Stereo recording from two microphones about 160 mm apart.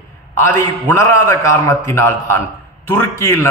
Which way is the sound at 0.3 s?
15° left (ahead or behind).